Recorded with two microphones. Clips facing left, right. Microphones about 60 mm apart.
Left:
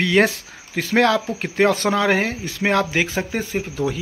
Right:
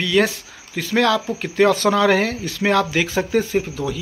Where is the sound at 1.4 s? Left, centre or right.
Left.